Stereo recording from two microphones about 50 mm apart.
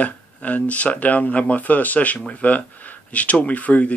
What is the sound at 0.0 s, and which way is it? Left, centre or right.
Speech, left.